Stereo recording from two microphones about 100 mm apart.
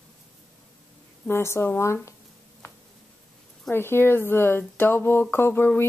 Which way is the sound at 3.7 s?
25° left (ahead or behind).